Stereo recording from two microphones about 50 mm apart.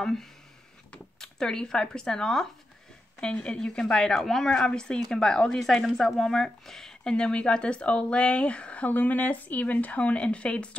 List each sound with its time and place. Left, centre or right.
0.0 s speech: centre; by 8.9 s left
8.9 s speech: left